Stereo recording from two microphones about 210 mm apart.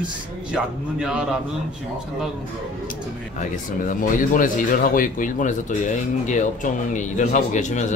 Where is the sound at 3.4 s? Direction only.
40° left (ahead or behind).